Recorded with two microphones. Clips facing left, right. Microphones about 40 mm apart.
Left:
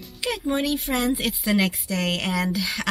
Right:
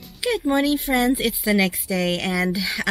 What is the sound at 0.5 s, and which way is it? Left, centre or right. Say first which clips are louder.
Speech: right 4 dB; centre.